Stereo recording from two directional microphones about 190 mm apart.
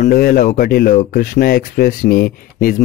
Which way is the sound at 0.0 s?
50° left (ahead or behind).